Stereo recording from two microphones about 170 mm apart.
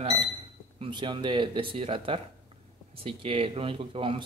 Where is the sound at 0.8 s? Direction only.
30° right (ahead or behind).